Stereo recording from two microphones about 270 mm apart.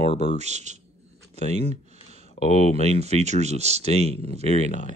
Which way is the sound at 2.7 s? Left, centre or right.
Right.